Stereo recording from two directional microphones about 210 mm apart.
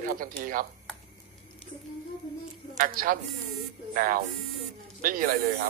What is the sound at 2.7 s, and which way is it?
Speech, 40° right (ahead or behind).